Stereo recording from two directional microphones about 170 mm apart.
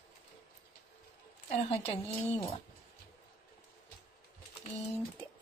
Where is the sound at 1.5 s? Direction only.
40° left (ahead or behind).